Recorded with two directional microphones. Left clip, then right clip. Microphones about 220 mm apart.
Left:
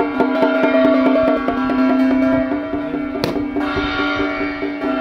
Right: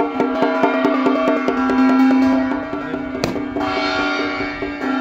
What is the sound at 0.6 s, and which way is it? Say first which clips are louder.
Music: left 3 dB; 10° right (ahead or behind).